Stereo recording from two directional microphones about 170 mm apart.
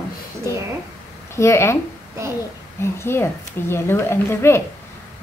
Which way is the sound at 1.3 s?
15° left (ahead or behind).